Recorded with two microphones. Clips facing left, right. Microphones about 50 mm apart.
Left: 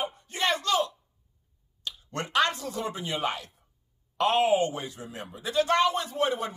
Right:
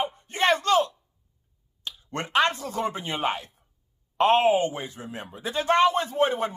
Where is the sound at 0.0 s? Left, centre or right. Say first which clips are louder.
Right 5 dB; right.